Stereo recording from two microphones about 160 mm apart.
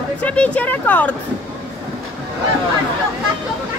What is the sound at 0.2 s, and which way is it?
Speech, 10° left (ahead or behind).